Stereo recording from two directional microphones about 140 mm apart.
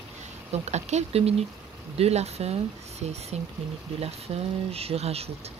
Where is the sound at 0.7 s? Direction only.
50° right (ahead or behind).